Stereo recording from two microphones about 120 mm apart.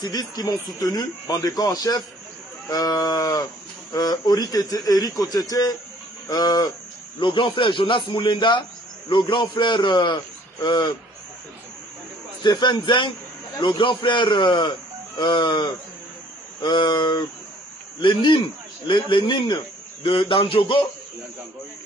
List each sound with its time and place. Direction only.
0.0 s a man's voice: 35° left (ahead or behind)
12.4 s a man's voice: 40° left (ahead or behind)